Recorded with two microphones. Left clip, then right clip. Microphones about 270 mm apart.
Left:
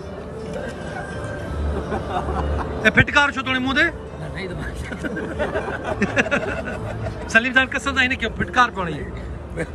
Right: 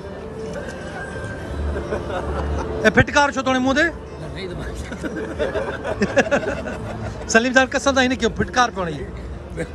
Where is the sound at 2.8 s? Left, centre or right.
Centre.